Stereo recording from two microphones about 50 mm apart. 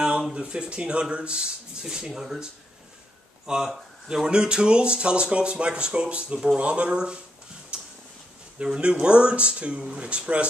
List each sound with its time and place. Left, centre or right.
0.3 s speech: centre
7.7 s a sound: centre
8.5 s speech: right